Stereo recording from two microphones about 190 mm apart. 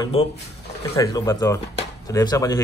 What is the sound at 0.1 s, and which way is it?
Speech, 35° left (ahead or behind).